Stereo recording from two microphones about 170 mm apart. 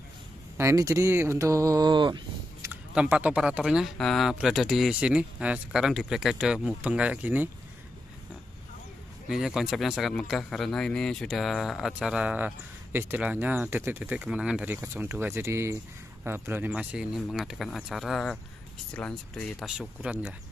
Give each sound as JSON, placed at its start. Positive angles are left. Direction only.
{"t": 0.6, "sound": "speech", "side_deg": -15}
{"t": 2.7, "sound": "speech", "side_deg": -10}
{"t": 9.3, "sound": "speech", "side_deg": -5}